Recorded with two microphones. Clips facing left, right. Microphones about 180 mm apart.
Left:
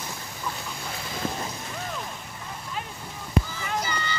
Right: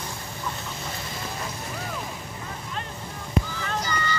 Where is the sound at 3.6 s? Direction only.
15° left (ahead or behind).